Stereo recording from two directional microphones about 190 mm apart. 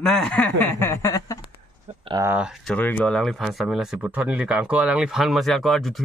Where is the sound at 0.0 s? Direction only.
5° left (ahead or behind).